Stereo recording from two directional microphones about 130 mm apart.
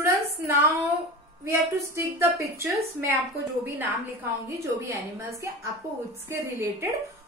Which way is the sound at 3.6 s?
15° right (ahead or behind).